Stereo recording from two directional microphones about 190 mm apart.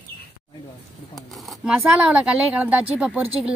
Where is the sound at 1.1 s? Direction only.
Centre (ahead or behind).